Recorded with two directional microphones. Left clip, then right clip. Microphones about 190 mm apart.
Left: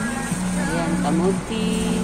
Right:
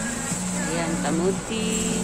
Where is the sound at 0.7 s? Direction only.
20° right (ahead or behind).